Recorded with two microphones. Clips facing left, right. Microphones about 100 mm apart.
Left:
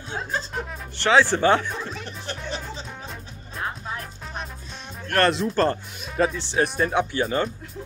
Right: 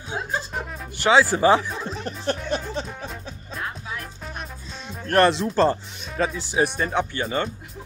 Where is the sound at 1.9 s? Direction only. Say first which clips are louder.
Right 6 dB; 40° right (ahead or behind).